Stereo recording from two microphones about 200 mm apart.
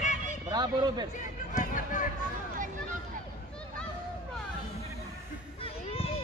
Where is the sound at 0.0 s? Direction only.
35° left (ahead or behind).